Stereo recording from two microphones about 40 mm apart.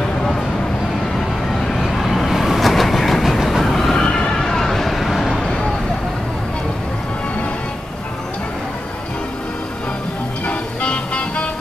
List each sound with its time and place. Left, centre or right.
1.8 s vehicle: centre
3.9 s vehicle: centre
10.4 s music: left